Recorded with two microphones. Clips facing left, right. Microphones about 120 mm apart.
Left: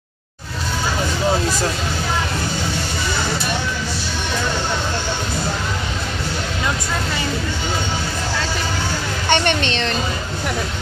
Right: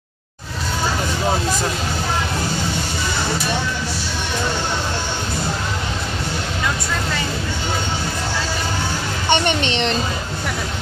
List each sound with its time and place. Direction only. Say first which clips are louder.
9.3 s a woman's voice: even; 15° right (ahead or behind)